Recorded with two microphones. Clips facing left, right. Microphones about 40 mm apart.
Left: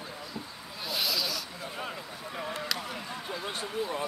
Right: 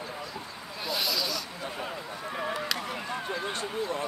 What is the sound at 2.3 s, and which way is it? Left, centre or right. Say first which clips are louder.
Speech: right 4 dB; centre.